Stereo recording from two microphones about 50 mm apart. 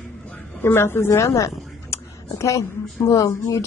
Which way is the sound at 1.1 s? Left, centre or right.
Left.